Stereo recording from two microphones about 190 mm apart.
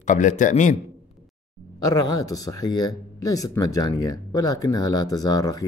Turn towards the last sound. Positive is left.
turn(degrees=20)  # may be behind; listen again after turning